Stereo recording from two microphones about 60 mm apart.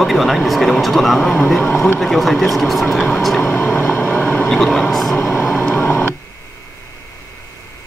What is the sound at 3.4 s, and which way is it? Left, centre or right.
Vehicle, left.